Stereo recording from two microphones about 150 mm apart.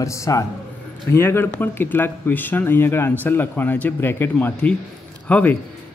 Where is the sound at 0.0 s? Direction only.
20° left (ahead or behind).